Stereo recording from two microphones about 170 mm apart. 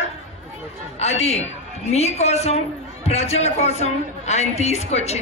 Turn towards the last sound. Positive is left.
turn(degrees=40)  # may be behind; listen again after turning